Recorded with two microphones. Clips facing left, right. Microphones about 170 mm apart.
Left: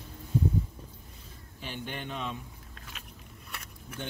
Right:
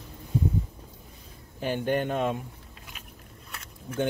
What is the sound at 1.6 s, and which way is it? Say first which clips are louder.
Speech: right 12 dB; 50° right (ahead or behind).